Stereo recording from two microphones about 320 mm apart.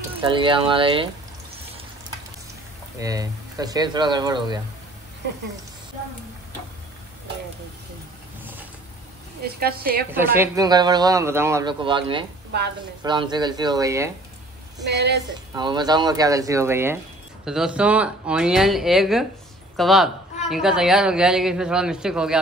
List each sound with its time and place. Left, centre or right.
0.2 s a man's voice: centre
3.0 s a man's voice: centre
9.4 s a woman's voice: right
10.1 s a man's voice: centre
12.5 s a woman's voice: right
13.0 s a man's voice: centre
14.9 s a woman's voice: right
15.5 s a man's voice: centre